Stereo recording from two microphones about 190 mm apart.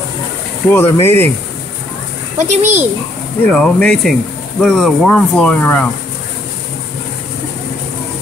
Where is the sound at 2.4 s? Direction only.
40° right (ahead or behind).